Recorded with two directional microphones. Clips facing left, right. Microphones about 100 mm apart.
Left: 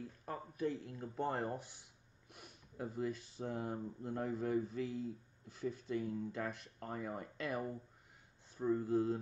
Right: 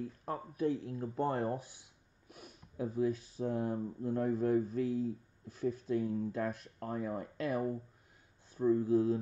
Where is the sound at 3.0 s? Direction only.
45° right (ahead or behind).